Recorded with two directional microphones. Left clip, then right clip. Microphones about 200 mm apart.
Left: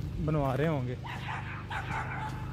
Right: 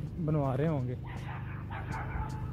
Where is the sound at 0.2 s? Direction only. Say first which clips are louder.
Left 2 dB; 5° left (ahead or behind).